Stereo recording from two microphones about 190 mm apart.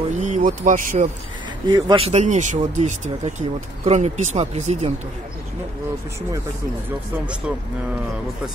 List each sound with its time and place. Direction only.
0.1 s speech: 40° right (ahead or behind)
1.7 s speech: 25° right (ahead or behind)